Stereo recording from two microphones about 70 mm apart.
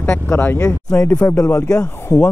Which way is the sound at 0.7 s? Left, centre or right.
Left.